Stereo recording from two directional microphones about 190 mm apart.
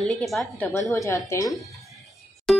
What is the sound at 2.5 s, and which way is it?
Music, 5° left (ahead or behind).